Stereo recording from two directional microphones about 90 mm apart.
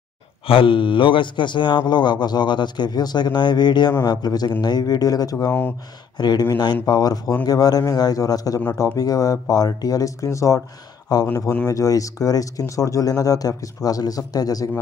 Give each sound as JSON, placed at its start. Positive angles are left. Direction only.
{"t": 0.5, "sound": "a man's voice", "side_deg": 80}
{"t": 11.1, "sound": "speech", "side_deg": 50}